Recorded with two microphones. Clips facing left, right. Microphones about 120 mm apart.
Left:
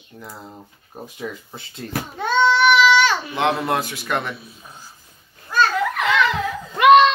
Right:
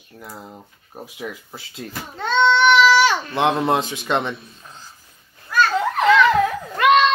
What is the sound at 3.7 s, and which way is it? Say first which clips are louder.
Speech: right 3 dB; 20° right (ahead or behind).